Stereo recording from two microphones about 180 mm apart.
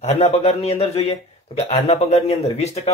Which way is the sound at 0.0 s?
35° left (ahead or behind).